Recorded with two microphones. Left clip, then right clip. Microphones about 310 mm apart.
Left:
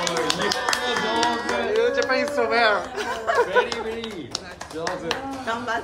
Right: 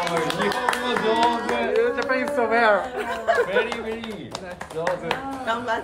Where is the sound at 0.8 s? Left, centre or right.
Right.